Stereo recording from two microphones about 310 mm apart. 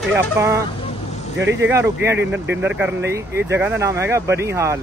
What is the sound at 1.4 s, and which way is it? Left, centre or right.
Speech, right.